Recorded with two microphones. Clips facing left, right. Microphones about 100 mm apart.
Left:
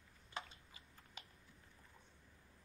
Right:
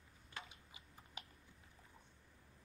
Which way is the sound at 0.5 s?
15° right (ahead or behind).